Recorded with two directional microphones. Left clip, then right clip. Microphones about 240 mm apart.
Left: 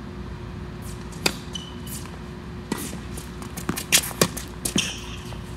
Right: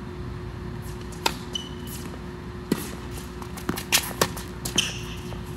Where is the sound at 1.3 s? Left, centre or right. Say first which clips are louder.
Left 1 dB; centre.